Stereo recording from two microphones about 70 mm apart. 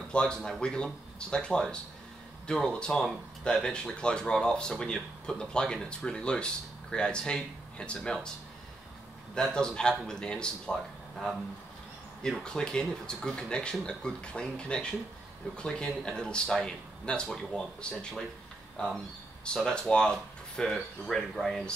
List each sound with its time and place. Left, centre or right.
0.1 s speech: centre
9.3 s speech: centre
18.8 s speech: centre